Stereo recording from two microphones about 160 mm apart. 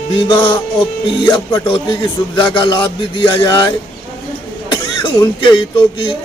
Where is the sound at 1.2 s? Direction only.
30° left (ahead or behind).